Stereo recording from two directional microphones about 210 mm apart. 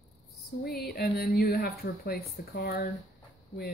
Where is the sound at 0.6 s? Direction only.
45° left (ahead or behind).